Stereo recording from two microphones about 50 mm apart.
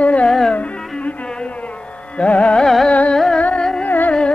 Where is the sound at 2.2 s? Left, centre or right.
Left.